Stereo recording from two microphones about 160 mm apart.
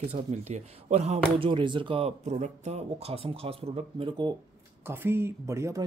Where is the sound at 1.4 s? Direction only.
30° right (ahead or behind).